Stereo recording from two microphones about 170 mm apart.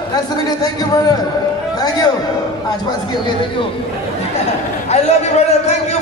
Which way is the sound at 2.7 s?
25° left (ahead or behind).